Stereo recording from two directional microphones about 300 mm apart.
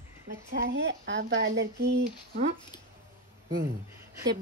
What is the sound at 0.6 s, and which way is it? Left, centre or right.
Speech, right.